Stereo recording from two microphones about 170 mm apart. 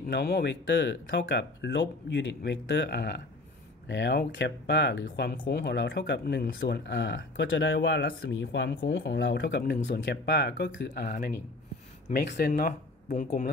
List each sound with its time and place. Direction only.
0.1 s speech: 80° left
3.8 s speech: 90° left
10.8 s speech: 65° left (ahead or behind)